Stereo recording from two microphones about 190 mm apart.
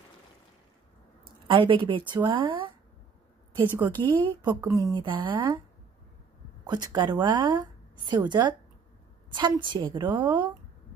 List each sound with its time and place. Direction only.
1.5 s a woman's voice: 25° right (ahead or behind)
4.0 s a woman's voice: 25° right (ahead or behind)
6.6 s a woman's voice: 20° right (ahead or behind)